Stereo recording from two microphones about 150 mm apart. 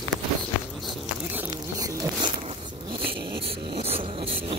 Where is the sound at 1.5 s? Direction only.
25° right (ahead or behind).